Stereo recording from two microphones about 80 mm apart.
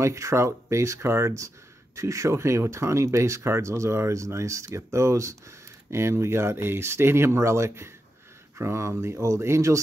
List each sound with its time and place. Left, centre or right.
0.0 s speech: right